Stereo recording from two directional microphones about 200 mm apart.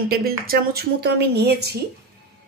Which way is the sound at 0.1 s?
50° right (ahead or behind).